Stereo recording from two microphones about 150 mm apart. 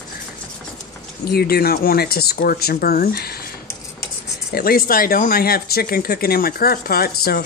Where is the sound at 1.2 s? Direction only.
90° left.